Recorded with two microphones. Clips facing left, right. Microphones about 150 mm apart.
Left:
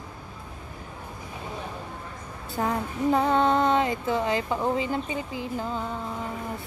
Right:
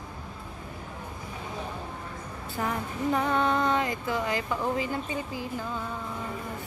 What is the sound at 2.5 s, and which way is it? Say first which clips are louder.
Music: left 4 dB; 30° left (ahead or behind).